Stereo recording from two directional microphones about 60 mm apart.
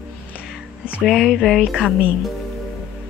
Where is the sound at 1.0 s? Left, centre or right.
Centre.